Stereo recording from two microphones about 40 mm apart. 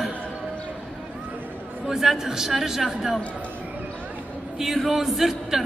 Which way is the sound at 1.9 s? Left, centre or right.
Centre.